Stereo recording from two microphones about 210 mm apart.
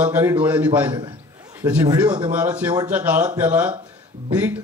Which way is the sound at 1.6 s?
20° right (ahead or behind).